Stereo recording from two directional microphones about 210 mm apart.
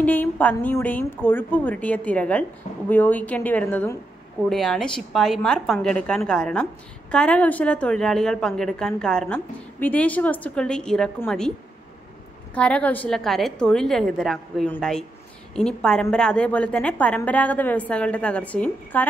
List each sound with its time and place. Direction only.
0.0 s a woman's voice: 10° left (ahead or behind)
12.5 s a woman's voice: 5° left (ahead or behind)